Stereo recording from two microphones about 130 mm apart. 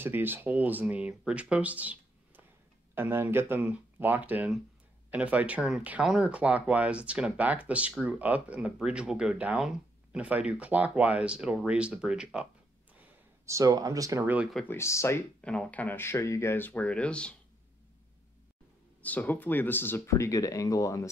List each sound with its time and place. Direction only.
0.0 s speech: 15° right (ahead or behind)
13.5 s speech: 25° right (ahead or behind)
14.2 s speech: 10° right (ahead or behind)
14.5 s speech: 10° left (ahead or behind)
14.8 s speech: 20° left (ahead or behind)
15.4 s speech: 10° left (ahead or behind)
19.0 s speech: 15° left (ahead or behind)